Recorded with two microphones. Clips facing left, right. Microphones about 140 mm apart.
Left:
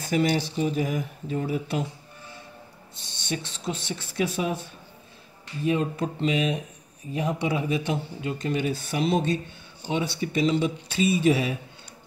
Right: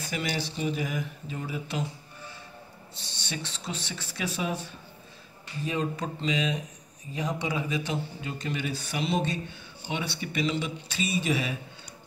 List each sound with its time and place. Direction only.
0.0 s speech: 45° left (ahead or behind)
3.1 s speech: 50° left (ahead or behind)
5.7 s speech: 50° left (ahead or behind)
9.8 s speech: 35° left (ahead or behind)